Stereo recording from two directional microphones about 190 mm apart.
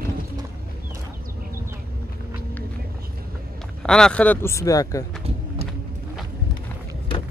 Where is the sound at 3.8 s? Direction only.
5° left (ahead or behind).